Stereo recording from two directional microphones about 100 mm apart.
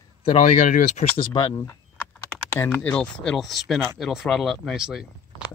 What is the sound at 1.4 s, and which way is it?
Speech, 55° left (ahead or behind).